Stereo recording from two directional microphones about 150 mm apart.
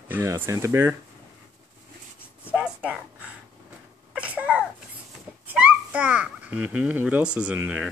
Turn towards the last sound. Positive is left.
turn(degrees=-10)  # may be behind; listen again after turning